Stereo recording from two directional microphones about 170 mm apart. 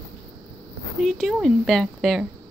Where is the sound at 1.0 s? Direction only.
Centre (ahead or behind).